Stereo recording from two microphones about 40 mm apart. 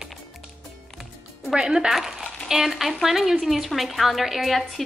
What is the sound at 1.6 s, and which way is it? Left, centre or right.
Speech, centre.